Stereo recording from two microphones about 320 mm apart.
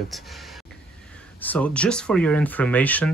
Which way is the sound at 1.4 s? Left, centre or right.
Centre.